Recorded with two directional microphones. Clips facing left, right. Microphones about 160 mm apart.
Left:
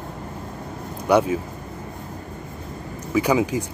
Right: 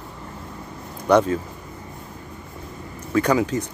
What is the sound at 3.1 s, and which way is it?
Speech, 10° left (ahead or behind).